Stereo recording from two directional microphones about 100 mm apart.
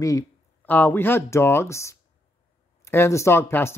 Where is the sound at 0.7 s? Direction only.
15° left (ahead or behind).